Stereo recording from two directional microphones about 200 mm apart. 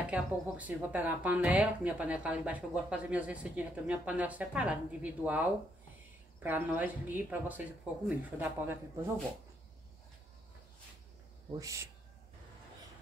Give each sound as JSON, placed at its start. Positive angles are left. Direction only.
{"t": 0.0, "sound": "speech", "side_deg": -5}
{"t": 11.5, "sound": "speech", "side_deg": -15}